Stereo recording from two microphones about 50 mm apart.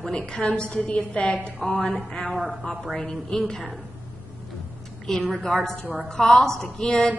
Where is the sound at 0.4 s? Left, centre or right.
Left.